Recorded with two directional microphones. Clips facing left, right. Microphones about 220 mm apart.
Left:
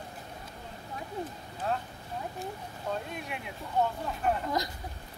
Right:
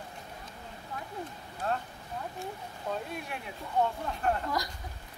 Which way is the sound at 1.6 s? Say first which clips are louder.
Even; centre (ahead or behind).